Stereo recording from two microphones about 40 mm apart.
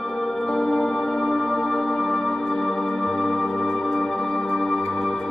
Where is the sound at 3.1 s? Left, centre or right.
Left.